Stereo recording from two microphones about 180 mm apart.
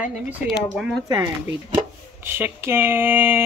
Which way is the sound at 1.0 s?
20° right (ahead or behind).